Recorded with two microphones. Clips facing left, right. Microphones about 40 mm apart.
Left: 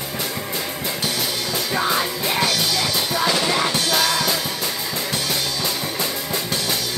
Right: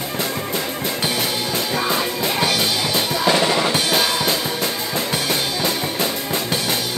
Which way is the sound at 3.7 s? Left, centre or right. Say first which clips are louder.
Right 1 dB; right.